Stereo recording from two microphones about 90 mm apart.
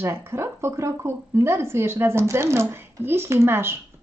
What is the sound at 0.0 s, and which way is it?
A woman's voice, 30° right (ahead or behind).